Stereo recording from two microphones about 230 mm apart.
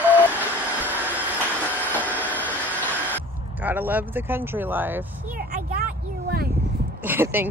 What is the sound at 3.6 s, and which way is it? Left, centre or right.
Speech, centre.